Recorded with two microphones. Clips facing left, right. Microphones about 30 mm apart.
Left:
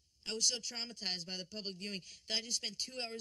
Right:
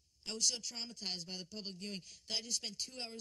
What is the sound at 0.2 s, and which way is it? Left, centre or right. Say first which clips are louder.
A man's voice: left 2 dB; left.